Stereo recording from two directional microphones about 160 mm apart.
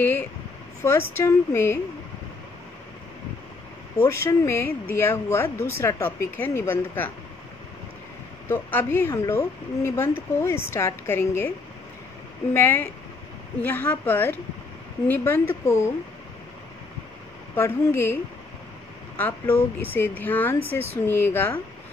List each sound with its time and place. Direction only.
0.8 s speech: 15° left (ahead or behind)
4.0 s speech: 15° left (ahead or behind)
8.5 s speech: 15° left (ahead or behind)
12.5 s speech: 15° left (ahead or behind)
17.6 s speech: 15° left (ahead or behind)